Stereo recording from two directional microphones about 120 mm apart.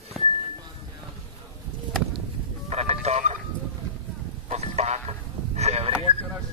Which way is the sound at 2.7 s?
60° right (ahead or behind).